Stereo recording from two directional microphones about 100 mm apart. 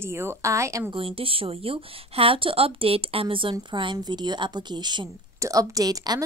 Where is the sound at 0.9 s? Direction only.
65° right (ahead or behind); by 5.1 s 50° right (ahead or behind).